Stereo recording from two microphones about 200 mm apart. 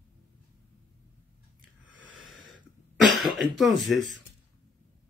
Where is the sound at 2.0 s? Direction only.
70° right (ahead or behind).